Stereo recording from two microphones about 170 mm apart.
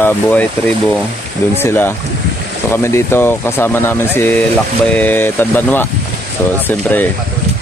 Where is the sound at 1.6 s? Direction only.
15° left (ahead or behind).